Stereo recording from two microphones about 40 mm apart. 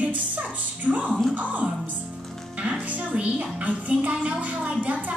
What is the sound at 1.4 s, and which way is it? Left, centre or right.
Music, right.